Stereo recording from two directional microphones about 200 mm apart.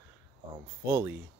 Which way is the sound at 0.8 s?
10° right (ahead or behind).